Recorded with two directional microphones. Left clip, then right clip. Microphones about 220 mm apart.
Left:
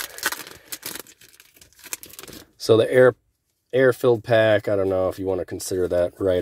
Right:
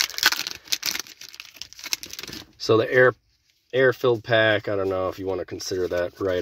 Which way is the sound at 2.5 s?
55° left (ahead or behind).